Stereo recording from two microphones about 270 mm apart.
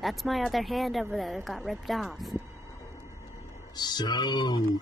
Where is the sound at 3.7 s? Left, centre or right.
Centre.